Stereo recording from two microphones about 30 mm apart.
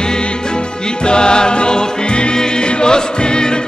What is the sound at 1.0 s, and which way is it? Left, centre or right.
Music, left.